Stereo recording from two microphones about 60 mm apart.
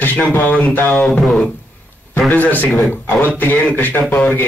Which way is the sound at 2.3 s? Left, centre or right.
Left.